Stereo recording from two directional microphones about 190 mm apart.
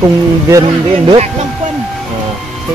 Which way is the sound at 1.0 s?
35° right (ahead or behind).